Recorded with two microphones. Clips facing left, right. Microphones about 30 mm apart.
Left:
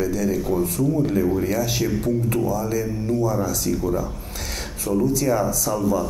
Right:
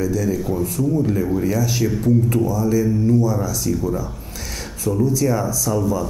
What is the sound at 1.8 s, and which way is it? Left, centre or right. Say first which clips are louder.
Speech: right 4 dB; left.